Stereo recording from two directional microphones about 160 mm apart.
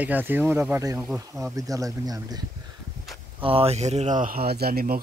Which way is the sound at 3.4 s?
35° right (ahead or behind).